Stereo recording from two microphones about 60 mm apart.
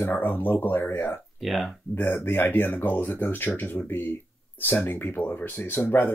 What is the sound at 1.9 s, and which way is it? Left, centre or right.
Speech, left.